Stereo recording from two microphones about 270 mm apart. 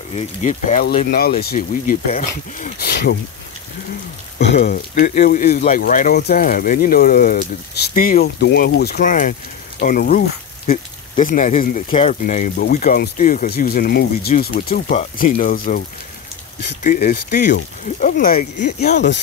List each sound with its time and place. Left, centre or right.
0.1 s speech: left
4.4 s speech: left
16.8 s speech: left